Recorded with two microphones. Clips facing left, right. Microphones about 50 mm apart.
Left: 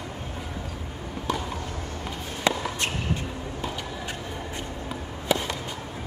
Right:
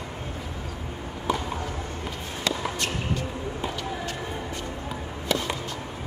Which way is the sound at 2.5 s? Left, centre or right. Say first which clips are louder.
Left 4 dB; left.